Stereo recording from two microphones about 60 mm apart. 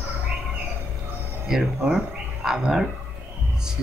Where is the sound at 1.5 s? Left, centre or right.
Centre.